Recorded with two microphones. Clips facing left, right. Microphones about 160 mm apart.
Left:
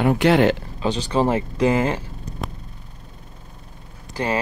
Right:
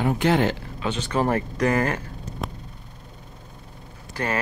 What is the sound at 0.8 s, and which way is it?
Speech, 35° left (ahead or behind).